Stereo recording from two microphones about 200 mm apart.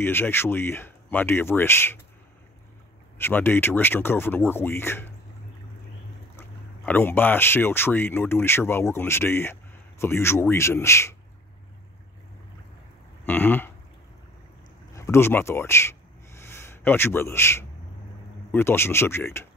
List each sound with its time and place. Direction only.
0.0 s speech: 10° left (ahead or behind)
3.2 s speech: 10° left (ahead or behind)
6.9 s speech: 10° left (ahead or behind)
13.3 s speech: 10° left (ahead or behind)
15.0 s speech: 15° left (ahead or behind)